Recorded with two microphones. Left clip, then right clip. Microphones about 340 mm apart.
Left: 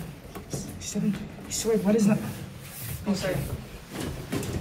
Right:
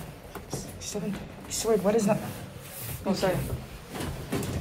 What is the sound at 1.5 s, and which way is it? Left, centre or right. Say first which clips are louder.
Speech: even; centre.